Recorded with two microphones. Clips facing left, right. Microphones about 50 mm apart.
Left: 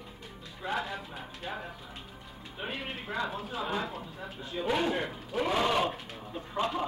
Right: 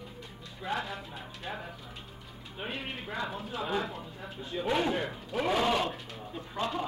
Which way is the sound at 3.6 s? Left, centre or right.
Centre.